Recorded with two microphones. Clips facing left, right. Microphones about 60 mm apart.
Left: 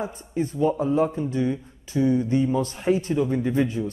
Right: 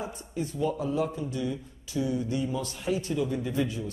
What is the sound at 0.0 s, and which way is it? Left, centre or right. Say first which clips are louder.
A man's voice: left 6 dB; left.